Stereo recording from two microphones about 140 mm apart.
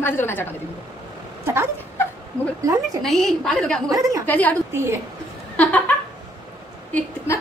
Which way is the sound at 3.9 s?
25° right (ahead or behind).